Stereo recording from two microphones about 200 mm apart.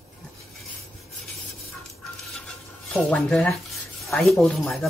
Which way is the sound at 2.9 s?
5° left (ahead or behind).